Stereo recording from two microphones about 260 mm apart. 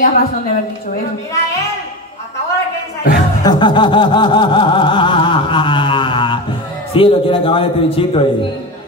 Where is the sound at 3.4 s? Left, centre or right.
Centre.